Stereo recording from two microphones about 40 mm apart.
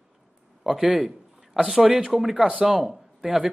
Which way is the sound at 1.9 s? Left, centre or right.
Right.